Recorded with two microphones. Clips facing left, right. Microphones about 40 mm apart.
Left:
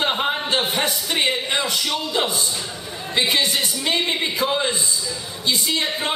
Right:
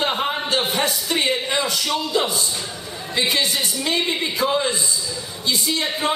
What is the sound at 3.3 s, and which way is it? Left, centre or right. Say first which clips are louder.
Speech: left 1 dB; left.